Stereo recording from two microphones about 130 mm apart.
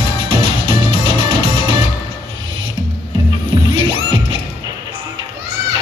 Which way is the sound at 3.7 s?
45° right (ahead or behind).